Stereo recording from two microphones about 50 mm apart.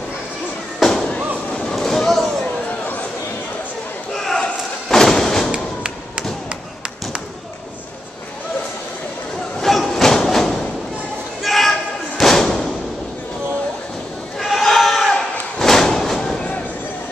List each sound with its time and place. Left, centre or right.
0.7 s a sound: centre
1.5 s a sound: left
1.8 s basketball bounce: centre
4.2 s thump: centre
9.6 s train: centre
11.4 s thump: centre
14.4 s thump: centre